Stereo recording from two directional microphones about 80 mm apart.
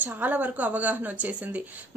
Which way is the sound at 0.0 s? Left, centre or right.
Right.